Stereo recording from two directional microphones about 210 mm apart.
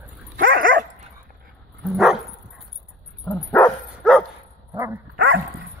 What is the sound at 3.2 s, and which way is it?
Dog, 10° left (ahead or behind).